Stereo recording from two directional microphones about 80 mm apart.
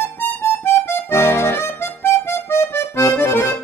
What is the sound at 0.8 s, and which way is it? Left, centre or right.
Accordion, left.